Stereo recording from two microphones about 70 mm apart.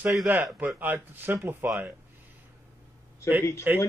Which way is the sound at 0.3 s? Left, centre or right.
Right.